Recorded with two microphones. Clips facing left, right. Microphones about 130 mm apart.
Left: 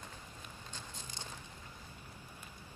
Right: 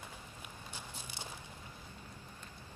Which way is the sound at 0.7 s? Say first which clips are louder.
Right 1 dB; 10° right (ahead or behind).